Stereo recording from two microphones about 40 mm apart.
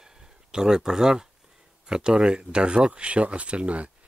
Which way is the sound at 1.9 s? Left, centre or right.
Right.